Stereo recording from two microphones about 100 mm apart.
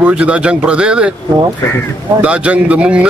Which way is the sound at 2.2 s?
15° right (ahead or behind).